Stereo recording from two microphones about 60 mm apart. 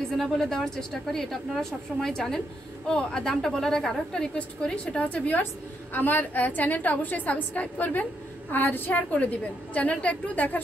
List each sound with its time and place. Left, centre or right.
0.2 s a woman's voice: centre; by 10.6 s left